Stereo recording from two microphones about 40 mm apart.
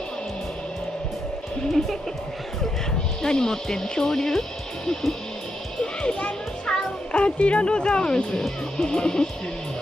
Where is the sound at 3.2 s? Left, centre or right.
Centre.